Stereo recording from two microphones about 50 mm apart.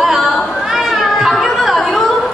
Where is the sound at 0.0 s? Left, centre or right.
Centre.